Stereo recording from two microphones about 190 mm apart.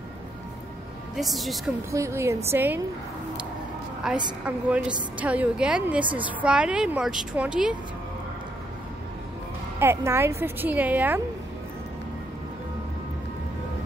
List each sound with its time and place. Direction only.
1.1 s a woman's voice: centre (ahead or behind)
1.9 s speech: 15° right (ahead or behind)
4.1 s a woman's voice: 5° right (ahead or behind)
9.8 s speech: 15° right (ahead or behind)